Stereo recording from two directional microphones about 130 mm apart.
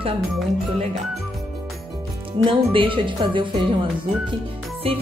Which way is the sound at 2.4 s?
40° right (ahead or behind).